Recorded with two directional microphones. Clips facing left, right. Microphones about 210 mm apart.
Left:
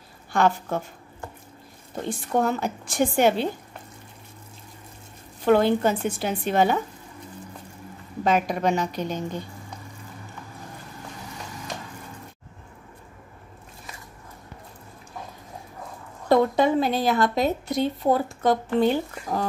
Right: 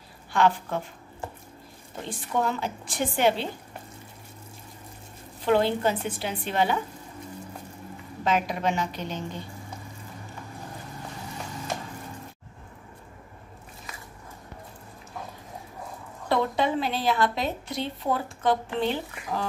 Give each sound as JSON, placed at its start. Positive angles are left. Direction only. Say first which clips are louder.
{"t": 0.3, "sound": "a woman's voice", "louder": "left 1 dB", "side_deg": 45}
{"t": 2.4, "sound": "a woman's voice", "louder": "left 4 dB", "side_deg": 45}
{"t": 5.4, "sound": "a woman's voice", "louder": "left 4 dB", "side_deg": 50}
{"t": 8.2, "sound": "a woman's voice", "louder": "left 4 dB", "side_deg": 45}
{"t": 16.3, "sound": "a woman's voice", "louder": "left 6 dB", "side_deg": 45}